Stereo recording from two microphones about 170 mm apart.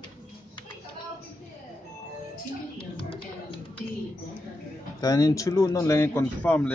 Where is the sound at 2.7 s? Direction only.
30° left (ahead or behind).